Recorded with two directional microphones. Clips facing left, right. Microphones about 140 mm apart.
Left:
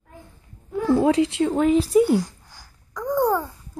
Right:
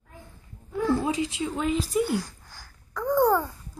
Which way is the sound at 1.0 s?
70° left (ahead or behind).